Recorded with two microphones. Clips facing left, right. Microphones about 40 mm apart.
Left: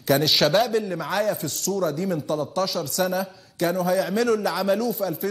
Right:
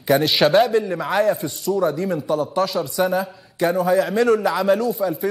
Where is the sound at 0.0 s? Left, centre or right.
Centre.